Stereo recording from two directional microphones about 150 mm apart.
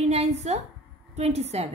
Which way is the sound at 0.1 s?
45° right (ahead or behind).